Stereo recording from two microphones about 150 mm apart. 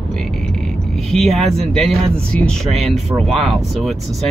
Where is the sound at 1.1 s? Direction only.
Centre (ahead or behind).